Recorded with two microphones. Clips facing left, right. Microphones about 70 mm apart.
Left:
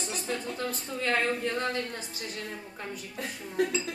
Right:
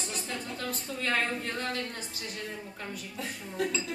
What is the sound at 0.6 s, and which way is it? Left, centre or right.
Speech, left.